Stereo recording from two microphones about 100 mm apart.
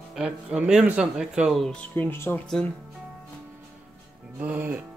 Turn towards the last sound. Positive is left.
turn(degrees=-15)  # may be behind; listen again after turning